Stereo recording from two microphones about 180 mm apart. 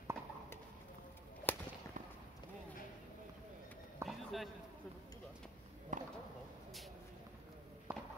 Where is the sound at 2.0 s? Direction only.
45° right (ahead or behind).